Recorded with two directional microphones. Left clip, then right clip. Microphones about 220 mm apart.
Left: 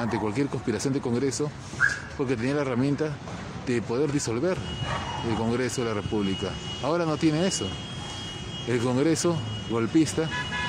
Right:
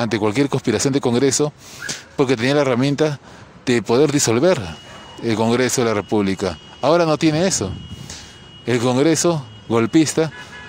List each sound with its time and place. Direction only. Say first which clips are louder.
0.0 s speech: right 9 dB; 45° right (ahead or behind)
2.1 s speech: right 10 dB; 45° right (ahead or behind)
8.6 s speech: right 8 dB; 45° right (ahead or behind)